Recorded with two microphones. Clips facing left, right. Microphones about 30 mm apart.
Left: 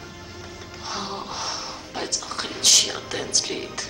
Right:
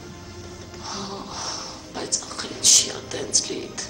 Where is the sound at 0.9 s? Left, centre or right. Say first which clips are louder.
Left 2 dB; centre.